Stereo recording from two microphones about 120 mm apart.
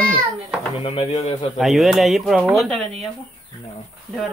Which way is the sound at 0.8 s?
55° left (ahead or behind).